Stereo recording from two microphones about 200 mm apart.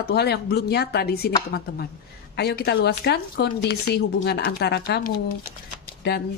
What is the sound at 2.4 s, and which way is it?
Speech, 55° left (ahead or behind).